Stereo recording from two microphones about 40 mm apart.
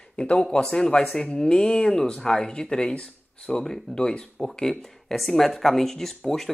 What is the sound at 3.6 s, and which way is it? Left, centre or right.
Speech, centre.